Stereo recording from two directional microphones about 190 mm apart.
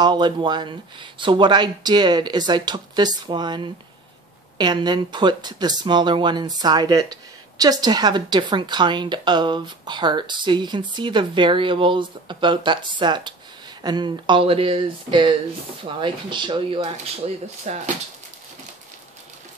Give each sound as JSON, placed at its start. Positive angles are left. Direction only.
{"t": 0.0, "sound": "speech", "side_deg": -25}
{"t": 17.6, "sound": "speech", "side_deg": -35}